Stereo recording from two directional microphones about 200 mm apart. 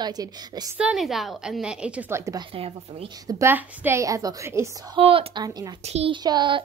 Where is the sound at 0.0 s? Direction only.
20° right (ahead or behind).